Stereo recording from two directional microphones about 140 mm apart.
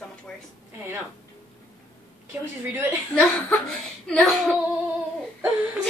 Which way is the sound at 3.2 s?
5° left (ahead or behind).